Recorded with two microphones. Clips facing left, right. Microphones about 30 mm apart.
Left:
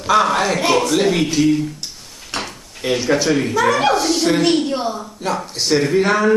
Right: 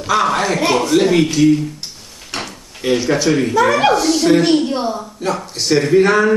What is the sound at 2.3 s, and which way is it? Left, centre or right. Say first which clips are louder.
Drawer open or close: even; centre.